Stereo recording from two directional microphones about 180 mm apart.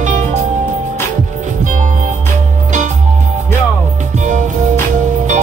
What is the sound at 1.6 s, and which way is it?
Music, 45° right (ahead or behind).